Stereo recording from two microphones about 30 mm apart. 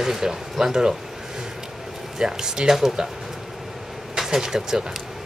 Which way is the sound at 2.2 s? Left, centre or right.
Centre.